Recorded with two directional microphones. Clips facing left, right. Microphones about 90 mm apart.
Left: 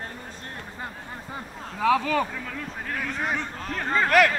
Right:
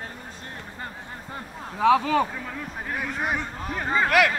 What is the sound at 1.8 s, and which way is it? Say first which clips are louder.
Speech: right 3 dB; 25° right (ahead or behind).